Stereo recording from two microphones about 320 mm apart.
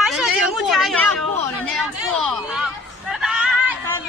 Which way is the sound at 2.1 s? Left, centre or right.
Centre.